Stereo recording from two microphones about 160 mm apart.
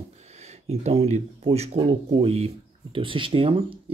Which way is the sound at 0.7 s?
40° right (ahead or behind).